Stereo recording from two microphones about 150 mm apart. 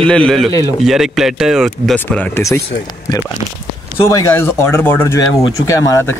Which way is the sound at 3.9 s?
20° left (ahead or behind).